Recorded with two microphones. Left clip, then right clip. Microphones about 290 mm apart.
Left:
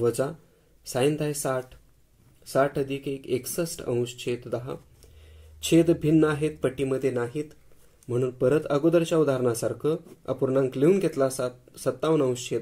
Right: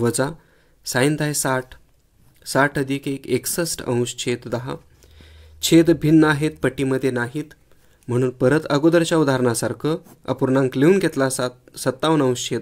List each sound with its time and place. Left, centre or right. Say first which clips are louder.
0.0 s speech: right 4 dB; right